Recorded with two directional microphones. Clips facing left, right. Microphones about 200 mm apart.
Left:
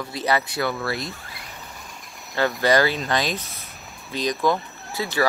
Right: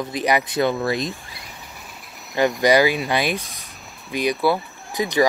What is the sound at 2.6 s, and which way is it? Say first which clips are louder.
Speech: right 3 dB; 15° right (ahead or behind).